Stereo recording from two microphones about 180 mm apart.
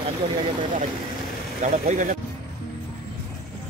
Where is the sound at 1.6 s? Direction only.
45° right (ahead or behind).